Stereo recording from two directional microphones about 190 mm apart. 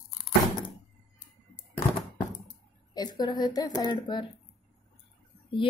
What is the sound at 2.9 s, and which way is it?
A woman's voice, 20° left (ahead or behind).